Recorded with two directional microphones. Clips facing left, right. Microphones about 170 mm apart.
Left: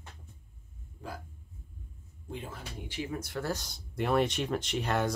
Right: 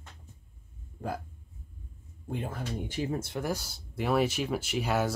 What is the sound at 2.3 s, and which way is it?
Speech, 50° right (ahead or behind).